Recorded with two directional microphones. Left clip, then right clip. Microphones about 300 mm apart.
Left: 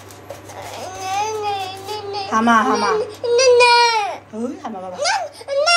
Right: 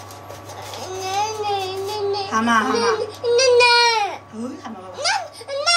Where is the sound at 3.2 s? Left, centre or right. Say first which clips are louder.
Left 2 dB; centre.